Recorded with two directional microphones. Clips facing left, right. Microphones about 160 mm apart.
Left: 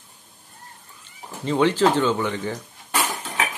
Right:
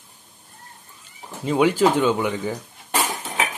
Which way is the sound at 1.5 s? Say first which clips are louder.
Right 1 dB; 10° right (ahead or behind).